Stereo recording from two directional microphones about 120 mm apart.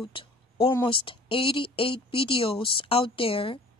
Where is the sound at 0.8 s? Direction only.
45° left (ahead or behind).